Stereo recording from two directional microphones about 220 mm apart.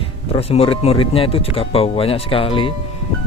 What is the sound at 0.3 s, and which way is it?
Speech, 25° left (ahead or behind).